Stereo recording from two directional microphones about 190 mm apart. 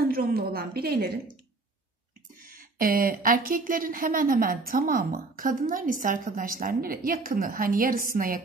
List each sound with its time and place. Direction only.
0.0 s speech: 50° right (ahead or behind)
2.5 s speech: 50° right (ahead or behind)